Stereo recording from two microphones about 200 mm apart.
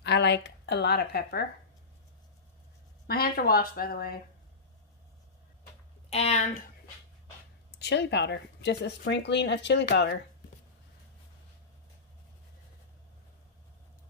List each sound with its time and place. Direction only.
0.0 s a woman's voice: 60° left (ahead or behind)
3.1 s speech: 50° left (ahead or behind)
6.0 s speech: 30° left (ahead or behind)
7.8 s speech: 60° left (ahead or behind)